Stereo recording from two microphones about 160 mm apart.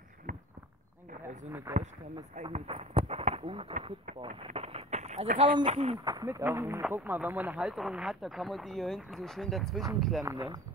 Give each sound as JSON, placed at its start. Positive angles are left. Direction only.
{"t": 0.3, "sound": "walk", "side_deg": -55}
{"t": 1.7, "sound": "speech", "side_deg": -15}
{"t": 2.5, "sound": "speech", "side_deg": -40}
{"t": 4.5, "sound": "a sound", "side_deg": -40}
{"t": 5.7, "sound": "speech", "side_deg": -45}
{"t": 6.0, "sound": "speech", "side_deg": -25}
{"t": 10.2, "sound": "speech", "side_deg": -25}